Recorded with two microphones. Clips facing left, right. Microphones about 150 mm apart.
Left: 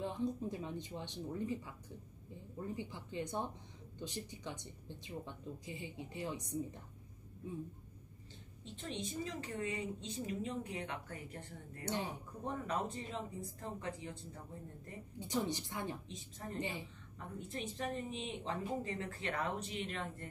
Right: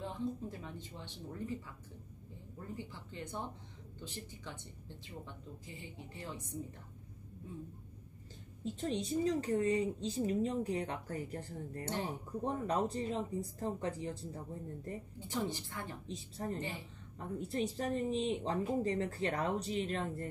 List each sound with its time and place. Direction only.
0.0 s speech: 15° left (ahead or behind)
2.7 s speech: 15° left (ahead or behind)
8.7 s a woman's voice: 35° right (ahead or behind)
11.8 s speech: 15° left (ahead or behind)
12.4 s a woman's voice: 35° right (ahead or behind)
15.1 s speech: 15° left (ahead or behind)
16.1 s a woman's voice: 35° right (ahead or behind)
16.5 s speech: 15° left (ahead or behind)
17.4 s a woman's voice: 35° right (ahead or behind)